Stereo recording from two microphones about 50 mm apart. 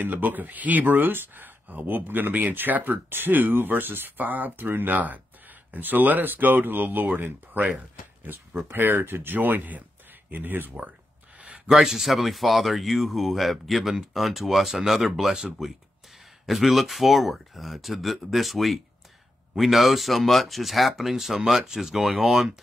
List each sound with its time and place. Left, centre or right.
0.0 s speech: right
8.5 s speech: right
11.4 s a sound: right
11.7 s speech: centre
16.4 s speech: centre